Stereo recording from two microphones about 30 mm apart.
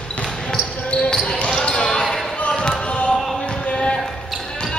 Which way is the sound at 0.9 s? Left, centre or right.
Left.